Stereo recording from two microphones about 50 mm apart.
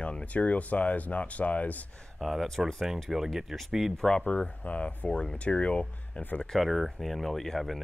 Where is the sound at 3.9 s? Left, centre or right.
Centre.